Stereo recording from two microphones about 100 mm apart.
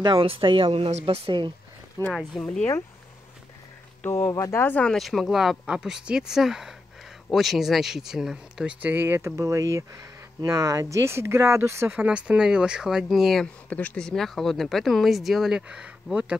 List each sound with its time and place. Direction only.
0.0 s speech: 60° right (ahead or behind)
2.0 s speech: 35° right (ahead or behind)
2.3 s speech: centre (ahead or behind)
4.1 s speech: 30° left (ahead or behind)
4.8 s speech: centre (ahead or behind)
8.8 s speech: 20° right (ahead or behind)
11.9 s speech: 15° right (ahead or behind)
13.7 s speech: 15° left (ahead or behind); by 16.3 s 10° right (ahead or behind)